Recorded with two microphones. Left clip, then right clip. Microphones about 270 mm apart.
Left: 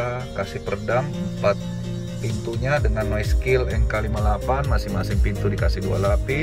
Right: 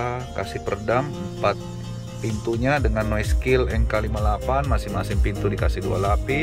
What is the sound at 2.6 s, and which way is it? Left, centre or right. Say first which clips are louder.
Speech: even; centre.